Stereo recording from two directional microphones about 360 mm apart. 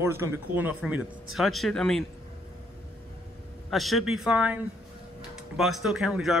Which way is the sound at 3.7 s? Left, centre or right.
Centre.